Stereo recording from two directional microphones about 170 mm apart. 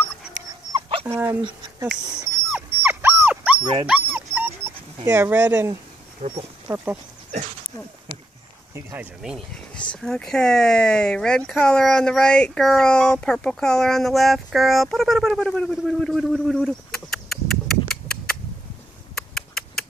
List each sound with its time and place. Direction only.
0.7 s dog: 30° right (ahead or behind)
1.0 s speech: 15° right (ahead or behind)
2.5 s dog: 10° right (ahead or behind)
6.2 s speech: 40° right (ahead or behind)
6.7 s speech: 10° right (ahead or behind)
8.7 s speech: 10° right (ahead or behind)
19.1 s a sound: 5° left (ahead or behind)